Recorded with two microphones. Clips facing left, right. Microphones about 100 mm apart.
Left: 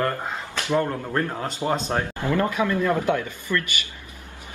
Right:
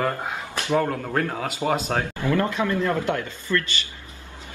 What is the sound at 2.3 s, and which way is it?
Speech, 15° left (ahead or behind).